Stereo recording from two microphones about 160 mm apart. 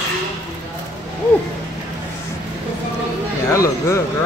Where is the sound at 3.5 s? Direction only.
20° left (ahead or behind).